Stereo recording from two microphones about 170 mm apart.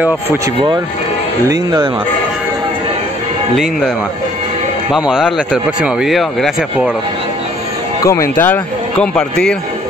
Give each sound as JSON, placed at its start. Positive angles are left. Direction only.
{"t": 1.5, "sound": "speech", "side_deg": -25}
{"t": 4.9, "sound": "speech", "side_deg": -5}
{"t": 8.0, "sound": "a man's voice", "side_deg": 15}